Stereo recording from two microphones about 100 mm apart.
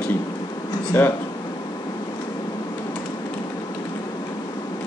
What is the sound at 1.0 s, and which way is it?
Speech, 20° left (ahead or behind).